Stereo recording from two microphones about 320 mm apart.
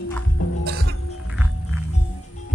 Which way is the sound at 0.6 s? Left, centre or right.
Right.